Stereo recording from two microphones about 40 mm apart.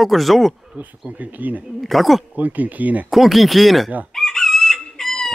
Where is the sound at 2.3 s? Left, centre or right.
Right.